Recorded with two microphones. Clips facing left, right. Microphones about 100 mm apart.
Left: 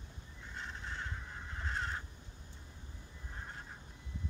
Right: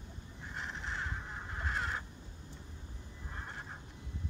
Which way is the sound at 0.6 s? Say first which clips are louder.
Right 3 dB; 85° right.